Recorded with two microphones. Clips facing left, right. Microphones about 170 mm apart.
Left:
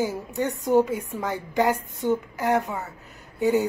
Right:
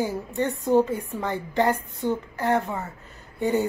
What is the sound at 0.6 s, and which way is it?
Speech, 15° left (ahead or behind).